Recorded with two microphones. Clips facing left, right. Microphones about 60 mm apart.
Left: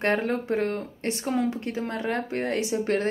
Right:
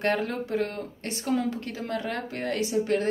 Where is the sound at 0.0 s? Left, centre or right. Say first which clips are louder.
Left 2 dB; left.